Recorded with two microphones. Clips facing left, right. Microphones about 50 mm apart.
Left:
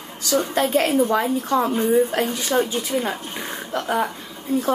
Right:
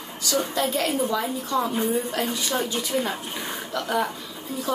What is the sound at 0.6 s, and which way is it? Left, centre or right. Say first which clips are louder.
A woman's voice: left 7 dB; left.